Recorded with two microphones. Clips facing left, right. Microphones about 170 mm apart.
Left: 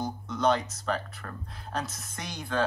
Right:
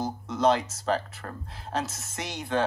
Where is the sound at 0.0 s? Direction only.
30° right (ahead or behind).